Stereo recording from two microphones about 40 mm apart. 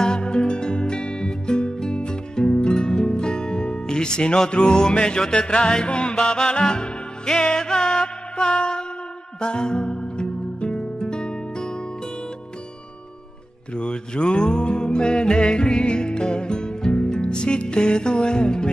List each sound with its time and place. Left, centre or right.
0.0 s music: left
13.7 s music: left